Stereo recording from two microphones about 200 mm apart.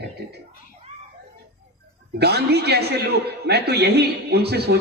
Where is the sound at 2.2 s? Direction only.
55° right (ahead or behind).